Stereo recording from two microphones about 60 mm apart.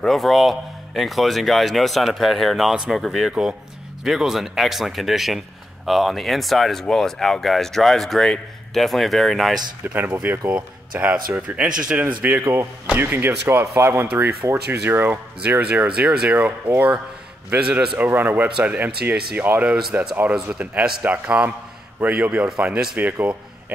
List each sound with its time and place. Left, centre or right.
0.0 s speech: centre
9.9 s speech: right; by 12.0 s centre
12.0 s speech: right
12.4 s speech: right
15.6 s speech: right